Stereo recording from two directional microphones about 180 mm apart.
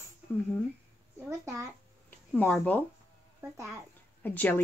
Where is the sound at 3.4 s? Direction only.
15° right (ahead or behind).